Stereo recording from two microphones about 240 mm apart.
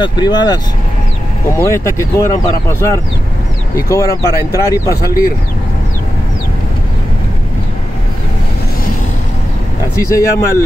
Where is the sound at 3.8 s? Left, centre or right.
Centre.